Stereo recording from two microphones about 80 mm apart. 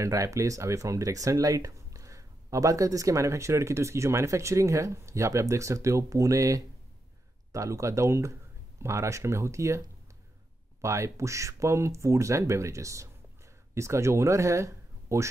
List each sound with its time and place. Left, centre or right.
0.0 s speech: right